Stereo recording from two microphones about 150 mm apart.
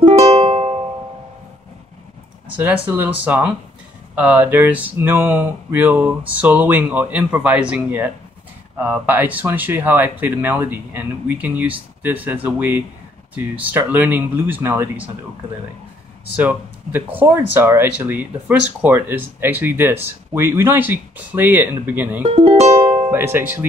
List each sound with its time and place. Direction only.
0.0 s music: 45° right (ahead or behind)
2.9 s speech: 10° right (ahead or behind)
16.3 s speech: 10° right (ahead or behind)
22.2 s music: 45° right (ahead or behind)
23.1 s speech: 15° right (ahead or behind)